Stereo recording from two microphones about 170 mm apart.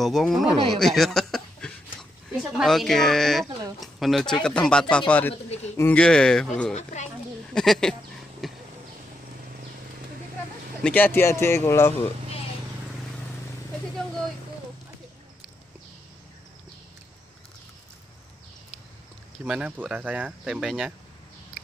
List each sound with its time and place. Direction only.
0.0 s speech: centre (ahead or behind)
6.7 s speech: 45° left (ahead or behind)
7.5 s speech: centre (ahead or behind)
8.4 s a sound: centre (ahead or behind)
10.8 s a man's voice: 10° left (ahead or behind)
19.4 s speech: 5° right (ahead or behind)